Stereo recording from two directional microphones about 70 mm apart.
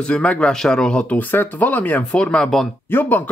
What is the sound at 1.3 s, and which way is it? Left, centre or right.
A man's voice, left.